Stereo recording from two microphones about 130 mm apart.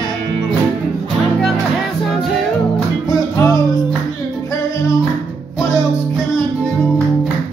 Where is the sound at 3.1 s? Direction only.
30° left (ahead or behind).